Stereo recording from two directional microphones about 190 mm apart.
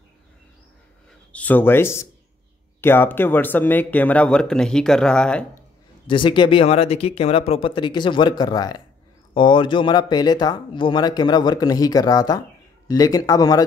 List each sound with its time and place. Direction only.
1.3 s speech: 10° left (ahead or behind)
6.0 s speech: 25° left (ahead or behind)